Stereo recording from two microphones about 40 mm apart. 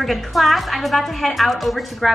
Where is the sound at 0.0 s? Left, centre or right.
Centre.